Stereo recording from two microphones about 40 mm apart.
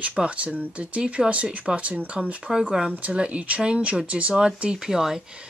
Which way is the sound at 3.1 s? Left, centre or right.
Right.